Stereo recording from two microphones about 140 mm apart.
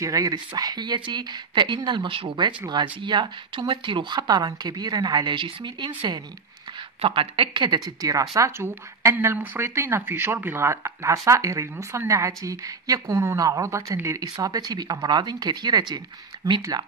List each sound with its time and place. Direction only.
0.0 s speech: 25° right (ahead or behind)
7.0 s speech: 40° right (ahead or behind)